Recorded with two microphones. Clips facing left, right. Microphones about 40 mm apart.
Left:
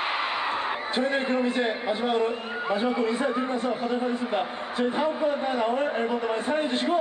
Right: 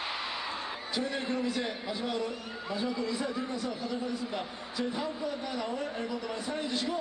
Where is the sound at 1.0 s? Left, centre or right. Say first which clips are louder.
Left 7 dB; left.